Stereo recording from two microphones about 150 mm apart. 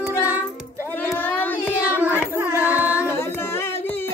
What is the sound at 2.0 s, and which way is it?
Carnatic music, 15° right (ahead or behind).